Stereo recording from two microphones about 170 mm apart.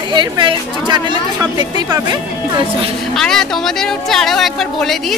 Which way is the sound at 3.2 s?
Centre (ahead or behind).